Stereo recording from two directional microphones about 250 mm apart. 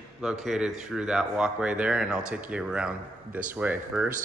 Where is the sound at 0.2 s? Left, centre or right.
Centre.